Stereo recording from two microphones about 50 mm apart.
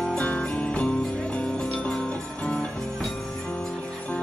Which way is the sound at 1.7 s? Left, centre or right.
Centre.